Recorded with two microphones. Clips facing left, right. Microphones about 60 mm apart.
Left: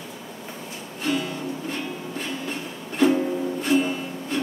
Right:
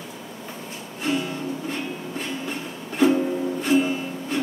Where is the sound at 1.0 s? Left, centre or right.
Centre.